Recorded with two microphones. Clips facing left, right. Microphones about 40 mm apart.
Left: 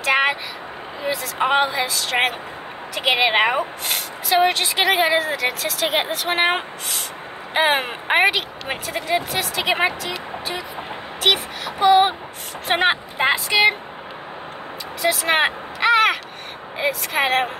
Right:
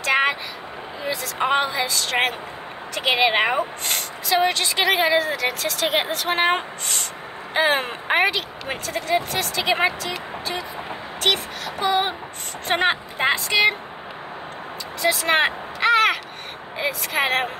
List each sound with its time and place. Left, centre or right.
0.0 s vehicle: centre
1.1 s speech: centre
11.2 s speech: centre
15.0 s a sound: centre
17.0 s speech: centre